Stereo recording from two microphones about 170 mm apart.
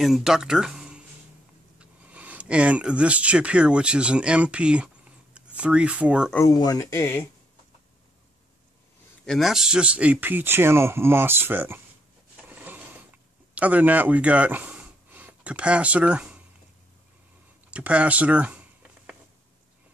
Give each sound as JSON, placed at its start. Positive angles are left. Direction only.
{"t": 0.0, "sound": "speech", "side_deg": 0}
{"t": 6.3, "sound": "speech", "side_deg": 20}
{"t": 9.2, "sound": "speech", "side_deg": 0}
{"t": 12.4, "sound": "rub", "side_deg": -10}
{"t": 13.6, "sound": "speech", "side_deg": -10}
{"t": 17.6, "sound": "a sound", "side_deg": -10}